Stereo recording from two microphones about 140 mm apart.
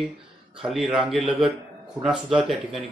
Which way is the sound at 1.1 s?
40° right (ahead or behind).